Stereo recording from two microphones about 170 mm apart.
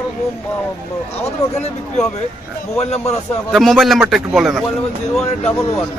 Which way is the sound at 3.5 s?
Centre (ahead or behind).